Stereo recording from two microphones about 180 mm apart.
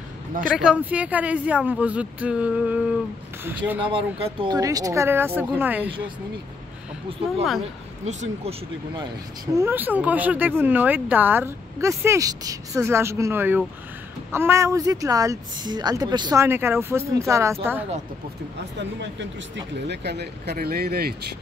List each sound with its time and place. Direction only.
0.6 s speech: 5° right (ahead or behind)
3.9 s speech: 30° right (ahead or behind); by 5.9 s 10° right (ahead or behind)
8.0 s speech: 40° right (ahead or behind)
9.6 s speech: 10° right (ahead or behind)
18.8 s speech: 80° right; by 21.1 s 60° right (ahead or behind)